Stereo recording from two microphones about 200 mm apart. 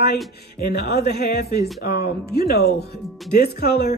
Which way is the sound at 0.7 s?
55° left (ahead or behind).